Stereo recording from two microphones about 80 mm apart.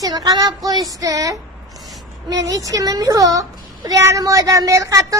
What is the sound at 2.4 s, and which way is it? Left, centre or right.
A child's voice, right.